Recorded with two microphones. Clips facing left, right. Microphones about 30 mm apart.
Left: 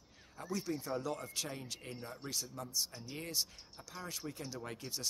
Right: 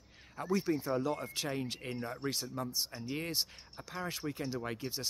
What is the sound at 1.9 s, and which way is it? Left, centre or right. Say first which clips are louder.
Speech: right 5 dB; right.